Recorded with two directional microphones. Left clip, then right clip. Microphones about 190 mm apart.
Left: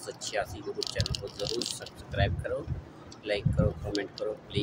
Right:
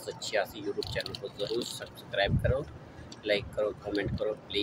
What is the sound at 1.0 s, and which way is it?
Speech, 40° left (ahead or behind).